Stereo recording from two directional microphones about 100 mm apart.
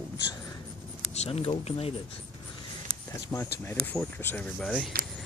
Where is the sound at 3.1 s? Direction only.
25° left (ahead or behind); by 4.9 s 5° left (ahead or behind).